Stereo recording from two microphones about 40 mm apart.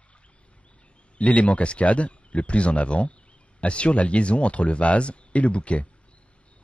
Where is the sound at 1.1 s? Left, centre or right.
Left.